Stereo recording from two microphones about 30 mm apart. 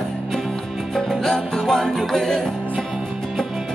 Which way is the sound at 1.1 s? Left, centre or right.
Centre.